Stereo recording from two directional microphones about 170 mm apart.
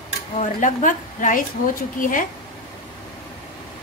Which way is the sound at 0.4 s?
50° left (ahead or behind).